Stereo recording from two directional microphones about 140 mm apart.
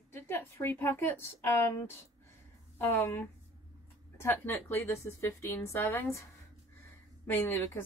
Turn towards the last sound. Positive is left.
turn(degrees=15)  # may be behind; listen again after turning